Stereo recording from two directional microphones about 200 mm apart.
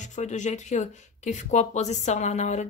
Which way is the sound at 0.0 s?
35° left (ahead or behind).